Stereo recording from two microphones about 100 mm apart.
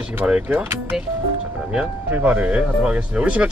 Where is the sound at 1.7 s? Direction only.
15° right (ahead or behind).